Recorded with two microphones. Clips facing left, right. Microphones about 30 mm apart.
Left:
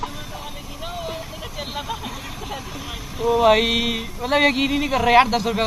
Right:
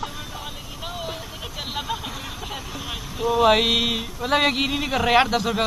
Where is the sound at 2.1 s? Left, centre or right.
Centre.